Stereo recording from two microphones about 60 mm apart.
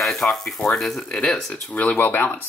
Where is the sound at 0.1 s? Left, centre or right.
Centre.